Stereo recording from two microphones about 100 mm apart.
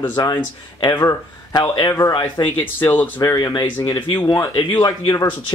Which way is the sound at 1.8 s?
40° left (ahead or behind).